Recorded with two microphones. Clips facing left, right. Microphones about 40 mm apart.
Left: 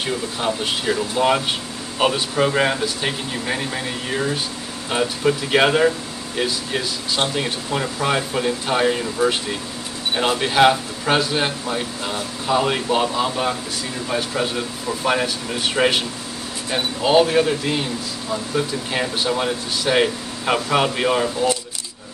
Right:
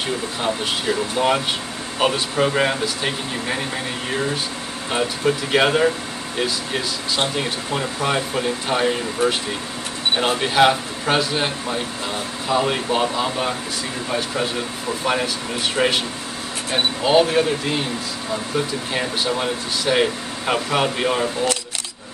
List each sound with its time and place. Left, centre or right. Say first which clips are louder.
0.4 s speech: even; centre
9.2 s speech: left 1 dB; right
10.4 s speech: left 1 dB; centre
17.0 s speech: left 1 dB; centre